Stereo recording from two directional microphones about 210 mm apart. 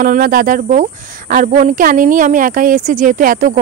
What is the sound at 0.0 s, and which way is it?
Speech, 40° right (ahead or behind).